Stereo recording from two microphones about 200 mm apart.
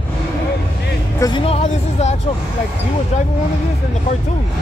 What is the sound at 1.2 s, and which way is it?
Speech, 25° left (ahead or behind).